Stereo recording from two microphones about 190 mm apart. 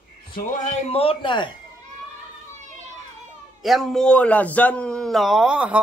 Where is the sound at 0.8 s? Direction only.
30° left (ahead or behind).